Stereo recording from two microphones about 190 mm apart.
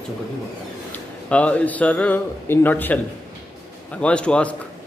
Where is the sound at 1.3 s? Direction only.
5° left (ahead or behind).